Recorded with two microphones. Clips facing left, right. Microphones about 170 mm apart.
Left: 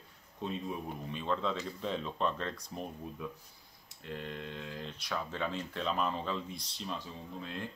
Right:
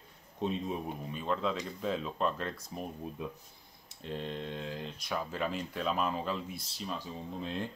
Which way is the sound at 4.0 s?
25° right (ahead or behind).